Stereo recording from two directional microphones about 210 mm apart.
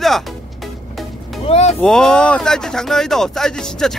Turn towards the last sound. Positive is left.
turn(degrees=0)  # may be behind; listen again after turning